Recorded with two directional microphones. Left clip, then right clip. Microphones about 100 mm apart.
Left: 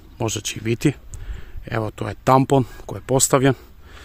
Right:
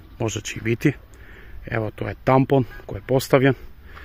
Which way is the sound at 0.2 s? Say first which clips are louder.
Left 1 dB; 15° left (ahead or behind).